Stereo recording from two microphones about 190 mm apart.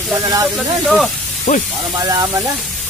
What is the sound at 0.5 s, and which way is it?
Speech, centre (ahead or behind).